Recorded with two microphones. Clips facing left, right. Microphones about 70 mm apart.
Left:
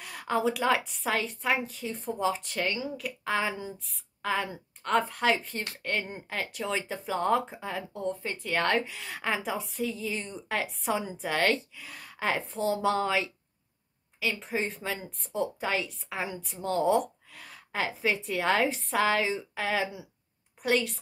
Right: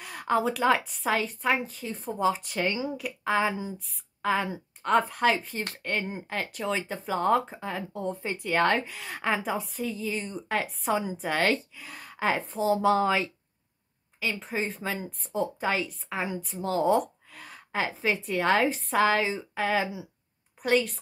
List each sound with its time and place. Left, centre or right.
0.0 s speech: centre
3.3 s a woman's voice: centre